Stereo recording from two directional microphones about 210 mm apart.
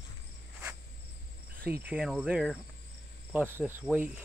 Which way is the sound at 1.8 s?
5° right (ahead or behind).